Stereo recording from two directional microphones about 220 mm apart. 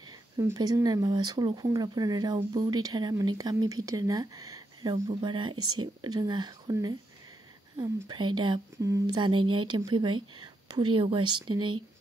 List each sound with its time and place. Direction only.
0.4 s speech: 15° right (ahead or behind)